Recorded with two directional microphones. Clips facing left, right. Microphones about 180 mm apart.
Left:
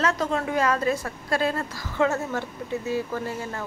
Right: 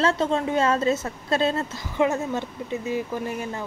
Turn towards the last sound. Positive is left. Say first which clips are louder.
# right 1 dB
turn(degrees=-15)  # may be behind; listen again after turning